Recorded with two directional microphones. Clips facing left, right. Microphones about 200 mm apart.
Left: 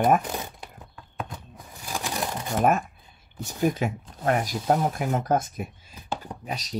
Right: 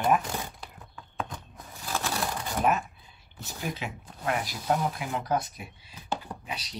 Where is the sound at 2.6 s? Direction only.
50° left (ahead or behind).